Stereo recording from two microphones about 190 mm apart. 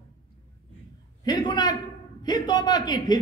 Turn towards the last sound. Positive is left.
turn(degrees=20)  # may be behind; listen again after turning